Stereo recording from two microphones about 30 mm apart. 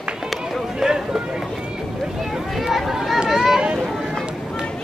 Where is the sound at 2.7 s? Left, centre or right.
Centre.